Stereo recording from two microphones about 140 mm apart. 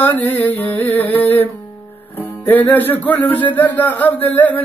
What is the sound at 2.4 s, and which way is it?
Speech, 15° left (ahead or behind).